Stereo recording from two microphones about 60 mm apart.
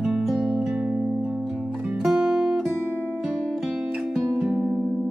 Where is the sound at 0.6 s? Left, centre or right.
Centre.